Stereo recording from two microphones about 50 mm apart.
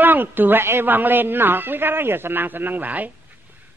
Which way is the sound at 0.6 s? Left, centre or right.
Right.